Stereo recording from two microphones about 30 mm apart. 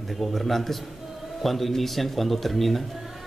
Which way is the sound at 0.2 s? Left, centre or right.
Centre.